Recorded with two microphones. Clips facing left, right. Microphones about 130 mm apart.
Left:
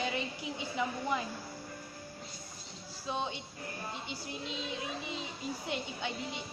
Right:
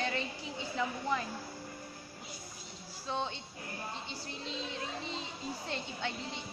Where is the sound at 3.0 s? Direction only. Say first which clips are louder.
Even; 15° left (ahead or behind).